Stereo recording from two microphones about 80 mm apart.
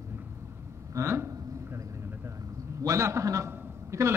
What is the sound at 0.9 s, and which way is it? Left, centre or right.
Speech, right.